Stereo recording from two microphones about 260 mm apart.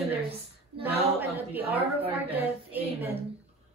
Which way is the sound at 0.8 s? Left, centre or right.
Centre.